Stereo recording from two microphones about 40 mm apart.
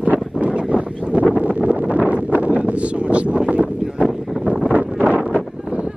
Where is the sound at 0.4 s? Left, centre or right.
Right.